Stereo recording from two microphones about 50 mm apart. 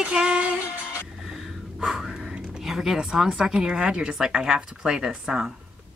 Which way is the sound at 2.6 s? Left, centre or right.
Centre.